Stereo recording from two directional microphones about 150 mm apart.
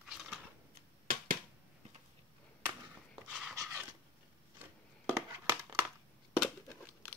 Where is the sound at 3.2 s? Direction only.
5° right (ahead or behind).